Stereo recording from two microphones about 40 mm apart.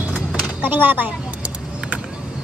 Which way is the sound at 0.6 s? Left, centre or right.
Right.